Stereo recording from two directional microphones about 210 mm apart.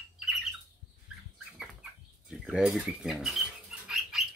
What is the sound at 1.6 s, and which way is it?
Bird, centre (ahead or behind).